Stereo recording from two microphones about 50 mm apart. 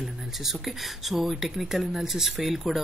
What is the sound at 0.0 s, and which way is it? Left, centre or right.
Speech, centre.